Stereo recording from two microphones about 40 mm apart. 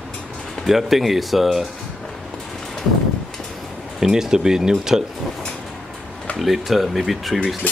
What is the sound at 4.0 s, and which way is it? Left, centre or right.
Speech, centre.